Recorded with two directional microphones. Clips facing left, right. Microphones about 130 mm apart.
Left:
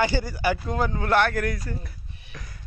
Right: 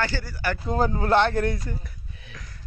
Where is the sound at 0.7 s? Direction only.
35° right (ahead or behind).